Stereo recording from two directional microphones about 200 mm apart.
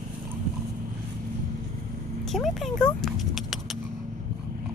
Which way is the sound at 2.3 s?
Centre (ahead or behind).